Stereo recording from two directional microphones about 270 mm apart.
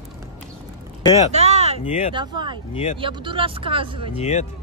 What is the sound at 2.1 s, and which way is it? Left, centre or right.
Speech, centre.